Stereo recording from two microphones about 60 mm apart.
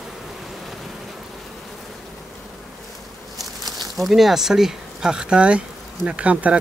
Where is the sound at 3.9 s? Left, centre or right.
Centre; by 6.6 s right.